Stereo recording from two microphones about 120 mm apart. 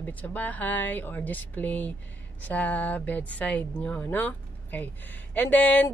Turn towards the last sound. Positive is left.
turn(degrees=15)  # may be behind; listen again after turning